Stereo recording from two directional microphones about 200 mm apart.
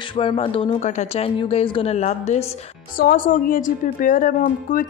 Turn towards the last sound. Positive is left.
turn(degrees=45)  # may be behind; listen again after turning